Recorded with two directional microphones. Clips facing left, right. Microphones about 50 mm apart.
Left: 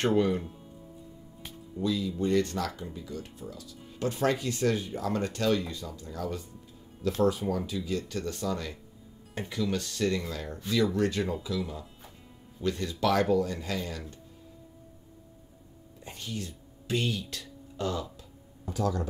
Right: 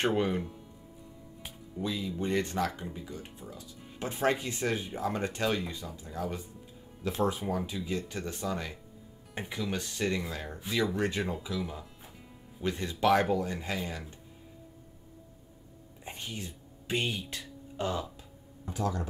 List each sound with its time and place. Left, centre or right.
0.0 s speech: centre
1.4 s speech: centre
16.0 s a sound: right
18.7 s speech: right